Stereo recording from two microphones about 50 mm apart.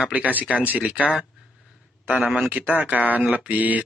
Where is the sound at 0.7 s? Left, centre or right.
Right.